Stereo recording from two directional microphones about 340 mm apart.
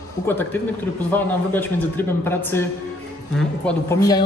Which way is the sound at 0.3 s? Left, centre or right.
Centre.